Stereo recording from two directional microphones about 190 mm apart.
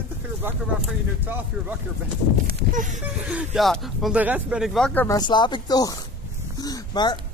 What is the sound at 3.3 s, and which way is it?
Speech, 5° right (ahead or behind).